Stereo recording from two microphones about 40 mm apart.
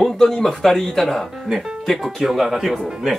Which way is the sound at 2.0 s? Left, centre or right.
Centre.